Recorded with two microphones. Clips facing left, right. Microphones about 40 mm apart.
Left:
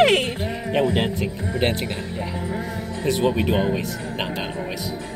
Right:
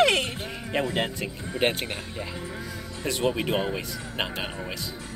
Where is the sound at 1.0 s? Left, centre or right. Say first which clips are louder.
Left 5 dB; centre.